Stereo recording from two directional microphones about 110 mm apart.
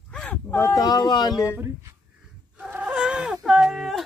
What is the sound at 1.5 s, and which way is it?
Speech, 25° right (ahead or behind).